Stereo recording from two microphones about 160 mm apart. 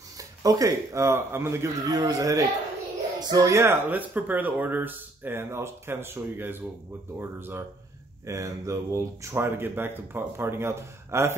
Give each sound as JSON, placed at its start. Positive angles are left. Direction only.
{"t": 0.2, "sound": "a man's voice", "side_deg": -20}